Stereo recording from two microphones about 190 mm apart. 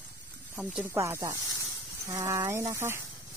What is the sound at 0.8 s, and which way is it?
Speech, 15° right (ahead or behind).